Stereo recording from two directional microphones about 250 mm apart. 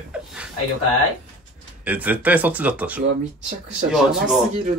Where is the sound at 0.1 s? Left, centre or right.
Centre.